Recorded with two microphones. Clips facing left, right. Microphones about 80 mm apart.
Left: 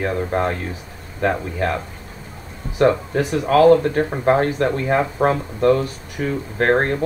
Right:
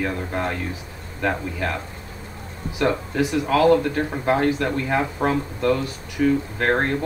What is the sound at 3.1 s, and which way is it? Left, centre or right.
Speech, left.